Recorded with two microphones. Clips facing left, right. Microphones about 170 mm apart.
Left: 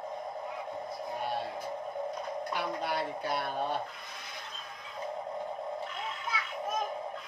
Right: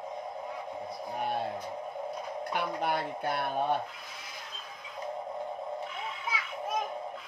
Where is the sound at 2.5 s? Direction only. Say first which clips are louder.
Right 4 dB; 55° right (ahead or behind).